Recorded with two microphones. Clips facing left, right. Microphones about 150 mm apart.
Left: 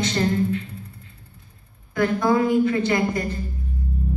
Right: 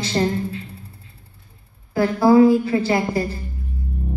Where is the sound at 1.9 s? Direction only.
30° right (ahead or behind).